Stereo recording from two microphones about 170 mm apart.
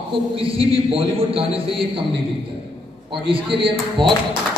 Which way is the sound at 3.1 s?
30° right (ahead or behind).